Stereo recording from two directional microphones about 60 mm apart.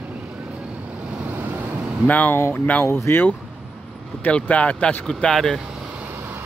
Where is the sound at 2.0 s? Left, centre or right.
Left.